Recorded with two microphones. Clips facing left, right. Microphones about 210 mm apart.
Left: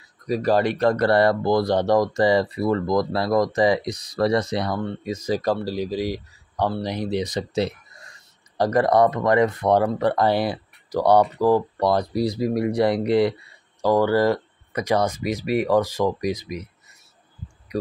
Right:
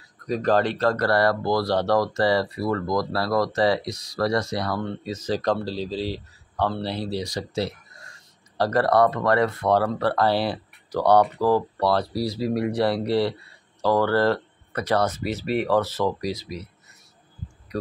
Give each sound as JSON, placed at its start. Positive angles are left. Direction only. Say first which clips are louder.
{"t": 0.3, "sound": "speech", "louder": "left 1 dB", "side_deg": 10}